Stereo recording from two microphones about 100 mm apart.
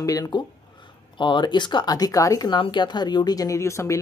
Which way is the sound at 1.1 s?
50° left (ahead or behind).